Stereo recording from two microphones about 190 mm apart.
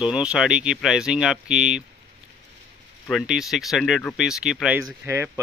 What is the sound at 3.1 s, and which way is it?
Speech, centre (ahead or behind).